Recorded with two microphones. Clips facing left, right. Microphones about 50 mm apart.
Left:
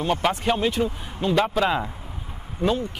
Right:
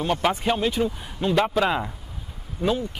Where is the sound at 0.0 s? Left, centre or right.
Centre.